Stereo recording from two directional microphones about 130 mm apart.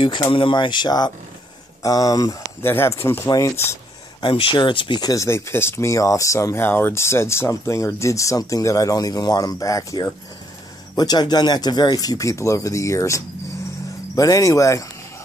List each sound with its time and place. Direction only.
0.0 s speech: 40° left (ahead or behind); by 3.7 s 20° left (ahead or behind)
4.2 s speech: 40° left (ahead or behind); by 14.9 s 25° left (ahead or behind)